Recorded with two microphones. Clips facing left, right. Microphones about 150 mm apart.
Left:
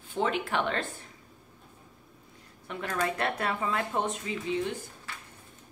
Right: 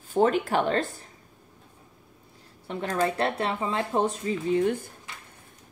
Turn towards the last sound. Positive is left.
turn(degrees=-50)  # may be behind; listen again after turning